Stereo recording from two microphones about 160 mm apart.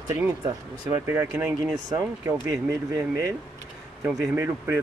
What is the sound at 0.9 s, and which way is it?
Speech, 15° right (ahead or behind).